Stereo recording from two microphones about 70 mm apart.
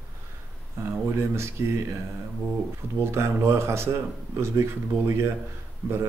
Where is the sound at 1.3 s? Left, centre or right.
Right.